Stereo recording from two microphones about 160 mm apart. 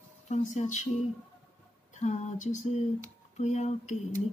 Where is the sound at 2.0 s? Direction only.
45° left (ahead or behind).